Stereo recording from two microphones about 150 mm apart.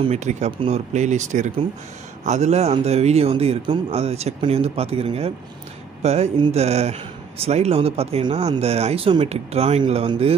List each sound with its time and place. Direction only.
0.0 s speech: 50° right (ahead or behind)